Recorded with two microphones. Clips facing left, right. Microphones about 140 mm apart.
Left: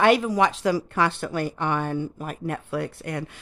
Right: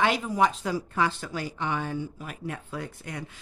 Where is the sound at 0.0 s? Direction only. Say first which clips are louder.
Left 5 dB; 70° left (ahead or behind).